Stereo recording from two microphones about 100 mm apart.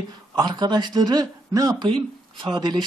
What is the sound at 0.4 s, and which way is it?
Speech, 45° right (ahead or behind).